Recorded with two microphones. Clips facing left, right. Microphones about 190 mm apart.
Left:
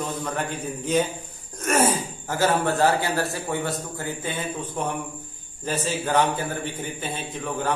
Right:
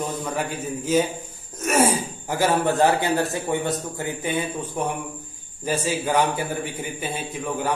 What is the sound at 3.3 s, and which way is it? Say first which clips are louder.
A man's voice: right 3 dB; 20° right (ahead or behind).